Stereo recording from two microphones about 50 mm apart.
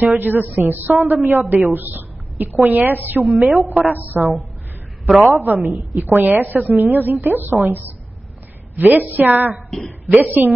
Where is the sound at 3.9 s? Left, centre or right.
Right.